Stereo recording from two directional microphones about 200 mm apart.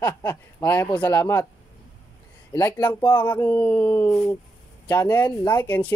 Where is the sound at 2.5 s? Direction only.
20° left (ahead or behind).